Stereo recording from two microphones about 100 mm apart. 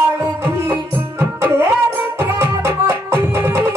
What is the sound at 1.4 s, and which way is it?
Music, 25° right (ahead or behind).